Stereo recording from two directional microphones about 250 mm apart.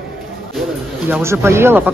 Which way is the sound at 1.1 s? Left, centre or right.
Centre.